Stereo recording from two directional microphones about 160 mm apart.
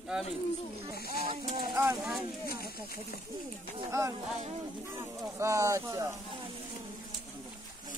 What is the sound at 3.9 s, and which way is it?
Speech, 20° right (ahead or behind).